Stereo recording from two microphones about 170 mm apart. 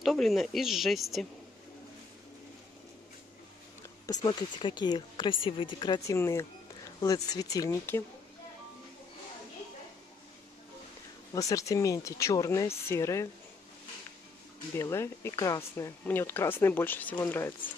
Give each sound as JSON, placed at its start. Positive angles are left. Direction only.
{"t": 0.0, "sound": "speech", "side_deg": 0}
{"t": 4.0, "sound": "speech", "side_deg": 25}
{"t": 11.3, "sound": "speech", "side_deg": 20}
{"t": 14.8, "sound": "speech", "side_deg": 15}